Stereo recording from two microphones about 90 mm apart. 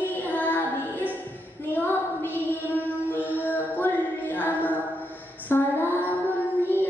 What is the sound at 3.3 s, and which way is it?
Music, 20° left (ahead or behind).